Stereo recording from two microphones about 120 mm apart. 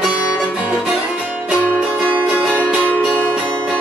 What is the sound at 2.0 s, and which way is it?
Music, 10° right (ahead or behind).